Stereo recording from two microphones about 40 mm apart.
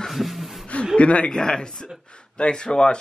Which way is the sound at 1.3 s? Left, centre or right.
Centre.